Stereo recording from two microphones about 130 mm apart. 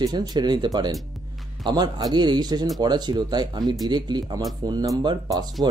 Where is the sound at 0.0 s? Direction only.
30° right (ahead or behind).